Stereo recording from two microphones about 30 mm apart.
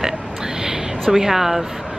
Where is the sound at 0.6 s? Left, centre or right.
Centre.